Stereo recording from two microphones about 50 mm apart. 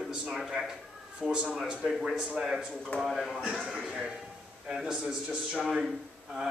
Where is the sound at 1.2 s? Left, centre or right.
Centre.